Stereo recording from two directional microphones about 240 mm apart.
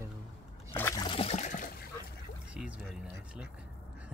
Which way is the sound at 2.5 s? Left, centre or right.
Centre.